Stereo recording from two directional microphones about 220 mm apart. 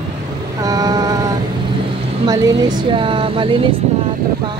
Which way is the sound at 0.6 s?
15° right (ahead or behind).